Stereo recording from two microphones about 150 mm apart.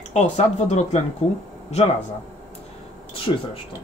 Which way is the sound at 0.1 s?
50° left (ahead or behind).